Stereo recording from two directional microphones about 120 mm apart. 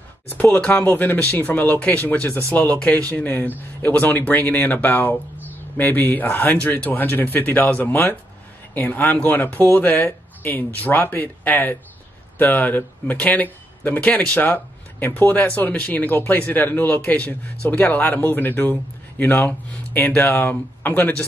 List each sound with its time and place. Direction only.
0.4 s speech: 10° left (ahead or behind)